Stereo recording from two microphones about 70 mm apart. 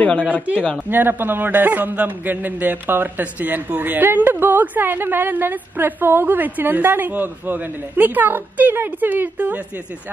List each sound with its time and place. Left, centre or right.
0.0 s speech: centre
0.8 s a man's voice: right